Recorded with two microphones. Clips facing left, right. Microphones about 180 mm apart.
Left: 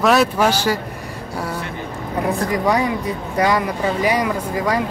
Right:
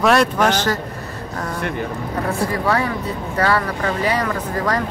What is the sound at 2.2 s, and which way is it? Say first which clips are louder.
Speech: left 2 dB; 15° left (ahead or behind).